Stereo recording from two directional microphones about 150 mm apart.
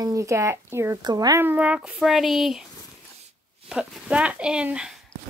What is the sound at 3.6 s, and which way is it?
Speech, 5° right (ahead or behind).